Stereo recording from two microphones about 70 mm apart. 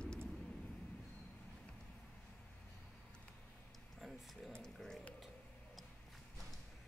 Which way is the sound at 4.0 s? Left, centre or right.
Centre.